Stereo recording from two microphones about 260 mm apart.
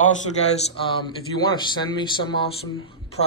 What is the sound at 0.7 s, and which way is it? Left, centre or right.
A man's voice, centre.